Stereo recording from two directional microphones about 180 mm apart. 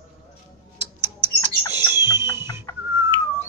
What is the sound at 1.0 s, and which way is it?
Bird, 15° right (ahead or behind).